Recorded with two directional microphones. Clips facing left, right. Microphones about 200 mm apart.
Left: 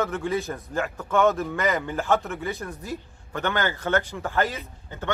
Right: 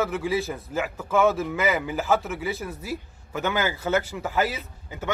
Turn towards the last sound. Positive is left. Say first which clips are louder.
# even
turn(degrees=-10)  # may be behind; listen again after turning